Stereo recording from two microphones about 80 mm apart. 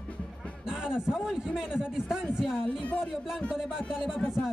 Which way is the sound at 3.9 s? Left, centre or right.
Centre.